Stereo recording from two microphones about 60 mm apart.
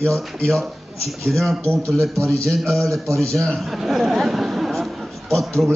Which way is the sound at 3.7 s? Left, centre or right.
Centre.